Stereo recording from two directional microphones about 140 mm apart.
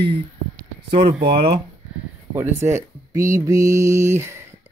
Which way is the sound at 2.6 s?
20° right (ahead or behind).